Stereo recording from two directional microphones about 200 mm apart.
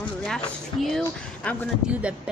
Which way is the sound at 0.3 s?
Centre (ahead or behind).